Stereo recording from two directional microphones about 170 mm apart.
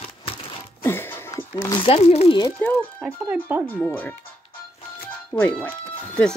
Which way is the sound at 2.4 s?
10° left (ahead or behind).